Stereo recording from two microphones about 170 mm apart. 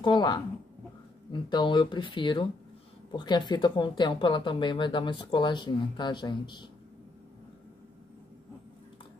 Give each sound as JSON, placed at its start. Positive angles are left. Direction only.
{"t": 0.0, "sound": "speech", "side_deg": 25}